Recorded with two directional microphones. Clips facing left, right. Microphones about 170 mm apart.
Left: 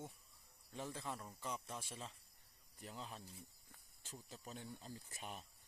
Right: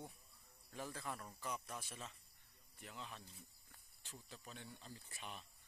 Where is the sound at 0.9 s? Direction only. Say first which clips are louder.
Left 1 dB; 25° left (ahead or behind); by 5.5 s 40° left (ahead or behind).